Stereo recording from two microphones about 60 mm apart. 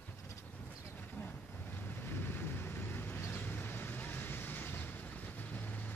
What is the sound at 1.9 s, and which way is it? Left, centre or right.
Vehicle, left.